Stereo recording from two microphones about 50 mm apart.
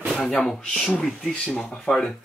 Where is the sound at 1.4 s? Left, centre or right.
Centre.